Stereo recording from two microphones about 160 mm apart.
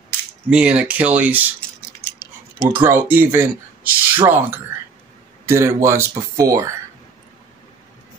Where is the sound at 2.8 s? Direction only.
15° right (ahead or behind).